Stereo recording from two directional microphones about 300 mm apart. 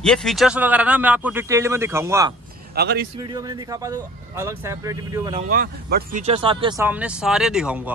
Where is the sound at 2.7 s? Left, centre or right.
Right.